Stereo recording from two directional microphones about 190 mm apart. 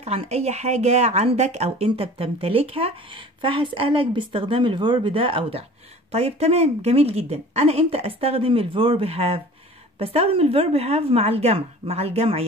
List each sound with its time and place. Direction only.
0.0 s a woman's voice: 35° right (ahead or behind)